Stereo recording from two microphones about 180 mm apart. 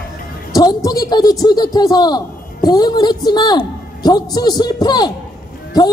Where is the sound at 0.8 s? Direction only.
20° left (ahead or behind).